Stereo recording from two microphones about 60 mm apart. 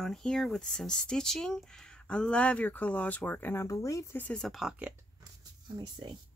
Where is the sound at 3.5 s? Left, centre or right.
Left.